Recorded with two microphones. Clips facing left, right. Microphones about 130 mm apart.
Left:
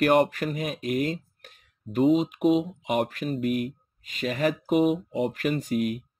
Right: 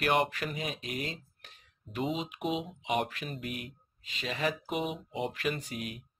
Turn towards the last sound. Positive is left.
turn(degrees=45)  # may be behind; listen again after turning